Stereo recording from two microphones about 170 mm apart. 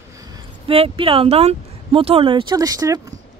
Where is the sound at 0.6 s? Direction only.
35° right (ahead or behind).